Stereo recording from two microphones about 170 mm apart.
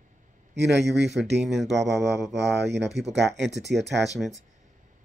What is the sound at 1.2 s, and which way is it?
Speech, centre (ahead or behind).